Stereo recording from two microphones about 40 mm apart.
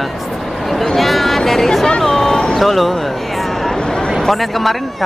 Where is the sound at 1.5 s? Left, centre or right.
Centre.